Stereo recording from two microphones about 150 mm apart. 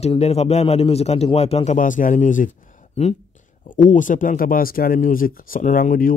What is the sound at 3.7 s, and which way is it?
Speech, 60° left (ahead or behind).